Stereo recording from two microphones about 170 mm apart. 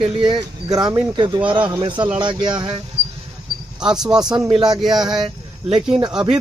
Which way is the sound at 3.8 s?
5° right (ahead or behind).